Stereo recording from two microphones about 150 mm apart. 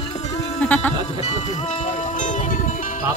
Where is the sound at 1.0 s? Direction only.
50° left (ahead or behind).